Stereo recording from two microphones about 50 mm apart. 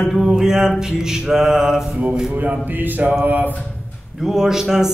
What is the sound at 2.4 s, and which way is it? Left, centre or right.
A man's voice, right.